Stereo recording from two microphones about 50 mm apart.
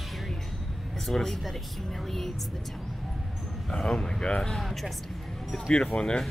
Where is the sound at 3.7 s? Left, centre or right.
Centre.